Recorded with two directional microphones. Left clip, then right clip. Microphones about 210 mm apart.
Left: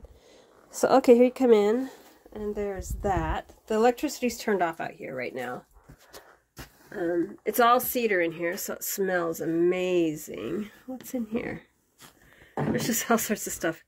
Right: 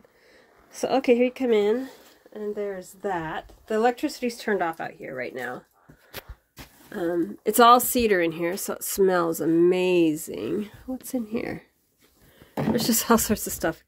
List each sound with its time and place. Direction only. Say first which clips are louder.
0.7 s speech: left 3 dB; 15° left (ahead or behind)
6.9 s speech: right 2 dB; 15° right (ahead or behind)
7.4 s speech: right 6 dB; 30° right (ahead or behind); by 11.6 s 15° right (ahead or behind)
12.8 s speech: right 5 dB; 15° right (ahead or behind)